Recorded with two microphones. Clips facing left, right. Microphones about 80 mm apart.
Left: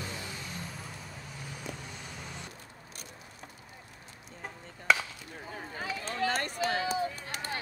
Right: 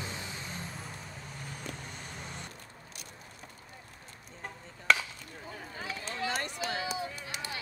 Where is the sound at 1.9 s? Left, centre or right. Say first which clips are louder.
Even; right.